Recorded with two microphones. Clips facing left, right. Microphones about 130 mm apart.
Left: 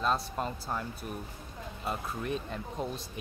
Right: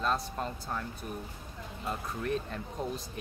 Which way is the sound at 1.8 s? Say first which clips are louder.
Even; 10° left (ahead or behind).